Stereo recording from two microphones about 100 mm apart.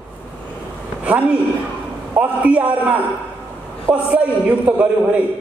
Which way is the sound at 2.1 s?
15° right (ahead or behind).